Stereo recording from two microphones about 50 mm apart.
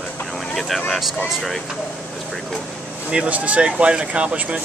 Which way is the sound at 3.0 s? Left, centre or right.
Right.